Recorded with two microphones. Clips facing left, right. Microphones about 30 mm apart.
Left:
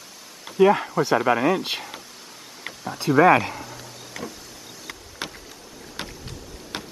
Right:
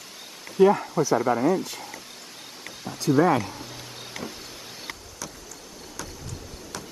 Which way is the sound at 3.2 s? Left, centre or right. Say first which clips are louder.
Left 6 dB; left.